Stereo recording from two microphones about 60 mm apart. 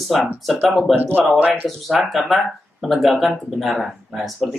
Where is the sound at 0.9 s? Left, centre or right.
Right.